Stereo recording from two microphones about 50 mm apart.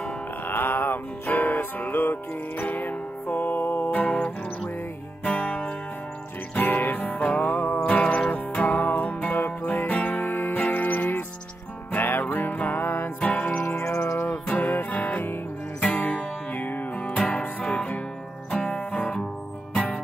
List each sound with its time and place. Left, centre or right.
0.5 s music: left
3.9 s music: left
7.8 s music: left
8.6 s music: left
13.2 s music: left
13.6 s music: left
14.6 s music: left
17.0 s music: left